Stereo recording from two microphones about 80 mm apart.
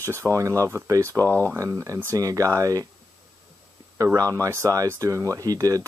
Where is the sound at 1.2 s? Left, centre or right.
Left.